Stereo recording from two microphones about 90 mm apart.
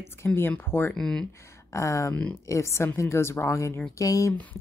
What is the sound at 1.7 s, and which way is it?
Speech, 35° left (ahead or behind).